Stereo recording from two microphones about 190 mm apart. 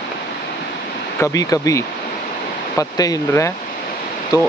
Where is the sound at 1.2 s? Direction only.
15° left (ahead or behind).